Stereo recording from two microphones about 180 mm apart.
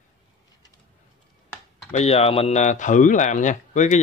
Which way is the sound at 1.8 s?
35° left (ahead or behind).